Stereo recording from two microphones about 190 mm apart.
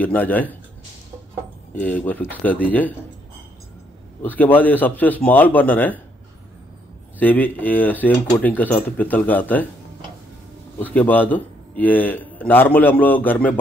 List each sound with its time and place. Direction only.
0.0 s a man's voice: 10° left (ahead or behind)
1.8 s a man's voice: 10° left (ahead or behind)
4.2 s a man's voice: 10° left (ahead or behind)
7.2 s a man's voice: 10° left (ahead or behind)
10.8 s a man's voice: 10° left (ahead or behind)